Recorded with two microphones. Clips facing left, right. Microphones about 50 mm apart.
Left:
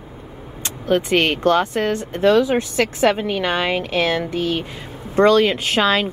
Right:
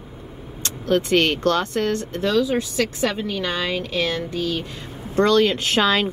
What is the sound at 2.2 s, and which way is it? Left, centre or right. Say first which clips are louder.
A woman's voice: left 6 dB; left.